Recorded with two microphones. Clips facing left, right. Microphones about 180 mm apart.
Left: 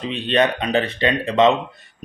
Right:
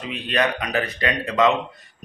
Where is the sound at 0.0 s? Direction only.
25° left (ahead or behind).